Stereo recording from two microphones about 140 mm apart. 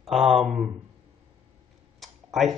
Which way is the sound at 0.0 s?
Centre (ahead or behind).